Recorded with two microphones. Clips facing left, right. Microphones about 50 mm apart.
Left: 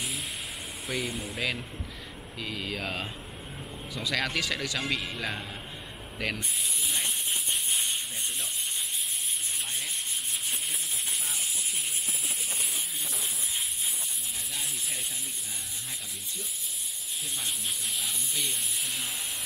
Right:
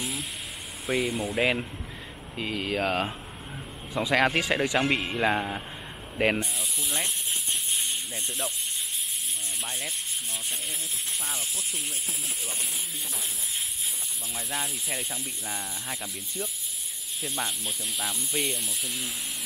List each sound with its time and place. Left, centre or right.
0.8 s speech: centre
1.4 s a man's voice: right
6.8 s speech: centre
14.6 s speech: centre
17.9 s speech: centre